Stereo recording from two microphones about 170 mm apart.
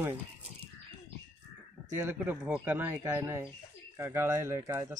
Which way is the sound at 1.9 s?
10° right (ahead or behind).